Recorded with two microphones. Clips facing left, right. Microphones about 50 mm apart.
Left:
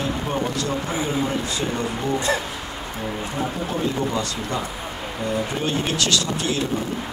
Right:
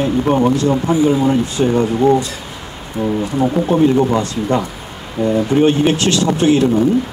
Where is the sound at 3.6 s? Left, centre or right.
Right.